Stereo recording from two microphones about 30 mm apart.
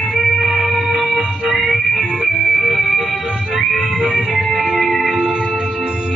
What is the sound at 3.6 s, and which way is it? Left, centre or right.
Music, centre.